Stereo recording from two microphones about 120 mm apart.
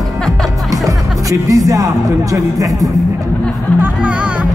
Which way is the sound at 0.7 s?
30° right (ahead or behind).